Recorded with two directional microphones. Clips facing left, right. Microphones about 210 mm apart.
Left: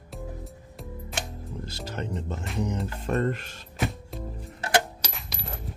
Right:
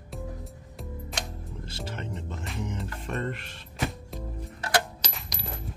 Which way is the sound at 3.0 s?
40° left (ahead or behind).